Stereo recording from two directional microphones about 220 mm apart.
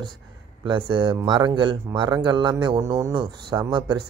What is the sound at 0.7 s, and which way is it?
A man's voice, 20° right (ahead or behind).